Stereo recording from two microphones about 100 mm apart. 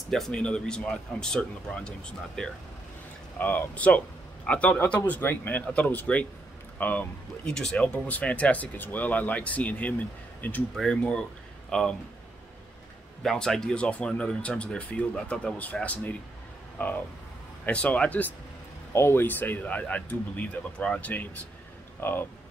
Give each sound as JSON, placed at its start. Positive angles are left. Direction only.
{"t": 0.1, "sound": "speech", "side_deg": 5}
{"t": 10.7, "sound": "speech", "side_deg": 5}
{"t": 13.2, "sound": "speech", "side_deg": 5}
{"t": 18.9, "sound": "speech", "side_deg": 25}